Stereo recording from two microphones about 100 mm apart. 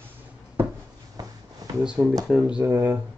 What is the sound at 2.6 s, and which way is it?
Speech, 20° right (ahead or behind).